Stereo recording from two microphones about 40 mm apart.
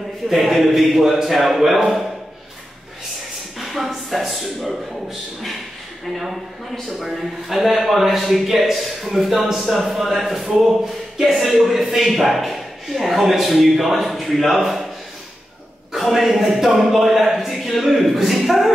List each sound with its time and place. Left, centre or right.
0.3 s a man's voice: centre
3.5 s speech: centre
6.1 s a man's voice: centre
16.1 s a man's voice: centre